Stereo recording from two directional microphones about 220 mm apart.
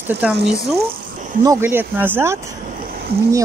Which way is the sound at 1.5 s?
10° right (ahead or behind).